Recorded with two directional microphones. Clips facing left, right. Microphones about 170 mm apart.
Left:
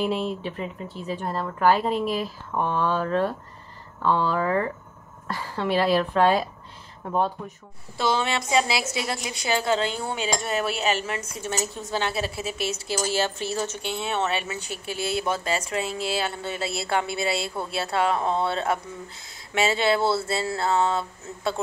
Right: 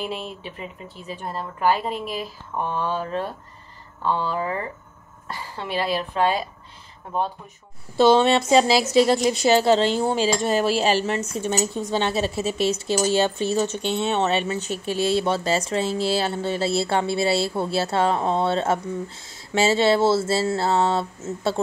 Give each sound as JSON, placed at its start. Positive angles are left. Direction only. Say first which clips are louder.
{"t": 0.0, "sound": "speech", "louder": "left 5 dB", "side_deg": 0}
{"t": 4.4, "sound": "speech", "louder": "left 3 dB", "side_deg": -15}
{"t": 5.3, "sound": "speech", "louder": "left 4 dB", "side_deg": 0}
{"t": 8.0, "sound": "speech", "louder": "right 9 dB", "side_deg": -30}
{"t": 20.2, "sound": "a sound", "louder": "right 4 dB", "side_deg": -30}